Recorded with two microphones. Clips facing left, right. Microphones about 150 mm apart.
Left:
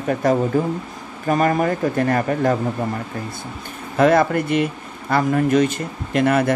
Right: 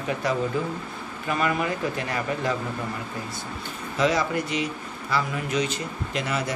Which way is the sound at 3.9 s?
55° left (ahead or behind).